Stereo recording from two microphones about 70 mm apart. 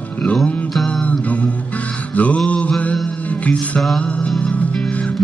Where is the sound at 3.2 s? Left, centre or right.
Centre.